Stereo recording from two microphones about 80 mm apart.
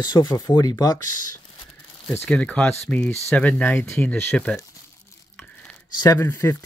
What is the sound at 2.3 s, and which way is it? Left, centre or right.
Speech, centre.